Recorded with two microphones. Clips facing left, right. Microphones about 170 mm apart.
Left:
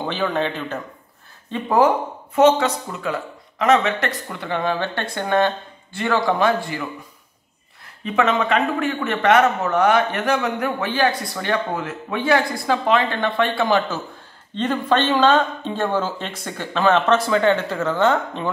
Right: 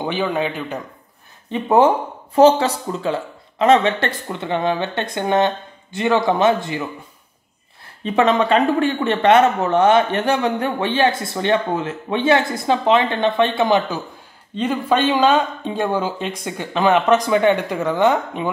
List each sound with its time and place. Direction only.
0.0 s speech: 15° right (ahead or behind)
1.5 s a man's voice: 25° right (ahead or behind)
8.0 s a man's voice: 35° right (ahead or behind); by 18.5 s 15° right (ahead or behind)